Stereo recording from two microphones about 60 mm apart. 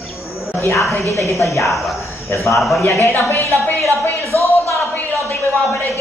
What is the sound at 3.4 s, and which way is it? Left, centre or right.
Speech, right.